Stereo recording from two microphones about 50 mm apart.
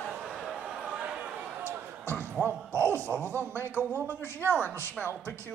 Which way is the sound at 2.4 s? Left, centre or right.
Right.